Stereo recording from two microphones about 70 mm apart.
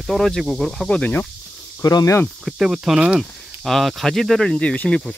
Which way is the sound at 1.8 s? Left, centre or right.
Left.